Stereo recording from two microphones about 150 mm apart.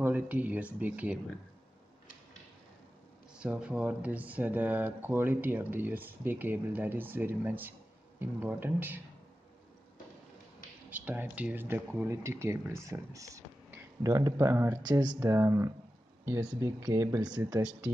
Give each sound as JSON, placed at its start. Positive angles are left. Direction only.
{"t": 0.0, "sound": "speech", "side_deg": -10}
{"t": 3.3, "sound": "speech", "side_deg": -5}
{"t": 10.9, "sound": "speech", "side_deg": -10}
{"t": 14.9, "sound": "speech", "side_deg": -30}
{"t": 15.1, "sound": "speech", "side_deg": -20}